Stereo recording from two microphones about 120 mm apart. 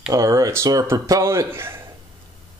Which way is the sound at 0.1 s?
30° right (ahead or behind).